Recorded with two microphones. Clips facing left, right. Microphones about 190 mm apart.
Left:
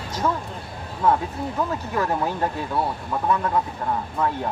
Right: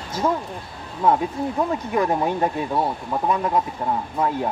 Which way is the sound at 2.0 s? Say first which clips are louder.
Right 3 dB; 15° right (ahead or behind).